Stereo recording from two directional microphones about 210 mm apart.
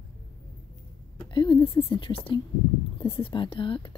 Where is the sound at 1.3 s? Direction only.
20° left (ahead or behind).